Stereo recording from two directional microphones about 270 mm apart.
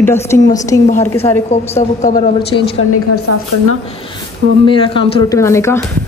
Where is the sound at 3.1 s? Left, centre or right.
Left.